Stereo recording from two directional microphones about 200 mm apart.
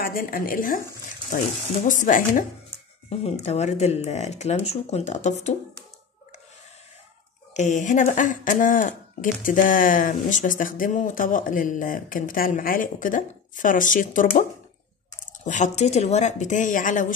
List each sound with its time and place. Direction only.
0.0 s speech: 45° left (ahead or behind)
1.9 s speech: 40° left (ahead or behind)
7.5 s speech: 35° left (ahead or behind)
15.4 s speech: 35° left (ahead or behind)